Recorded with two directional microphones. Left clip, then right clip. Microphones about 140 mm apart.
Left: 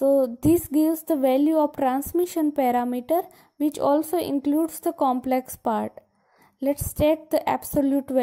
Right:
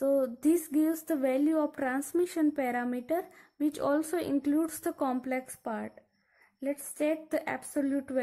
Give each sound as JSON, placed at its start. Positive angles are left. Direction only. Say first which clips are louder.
{"t": 0.0, "sound": "speech", "louder": "left 8 dB", "side_deg": 20}